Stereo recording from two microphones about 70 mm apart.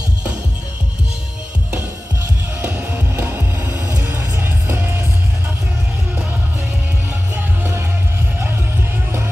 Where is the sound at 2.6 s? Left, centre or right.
Centre.